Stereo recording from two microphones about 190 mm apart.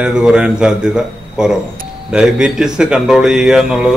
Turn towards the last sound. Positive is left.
turn(degrees=-5)  # may be behind; listen again after turning